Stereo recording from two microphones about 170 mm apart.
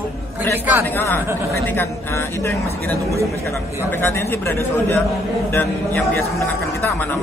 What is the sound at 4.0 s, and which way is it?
A man's voice, 15° left (ahead or behind).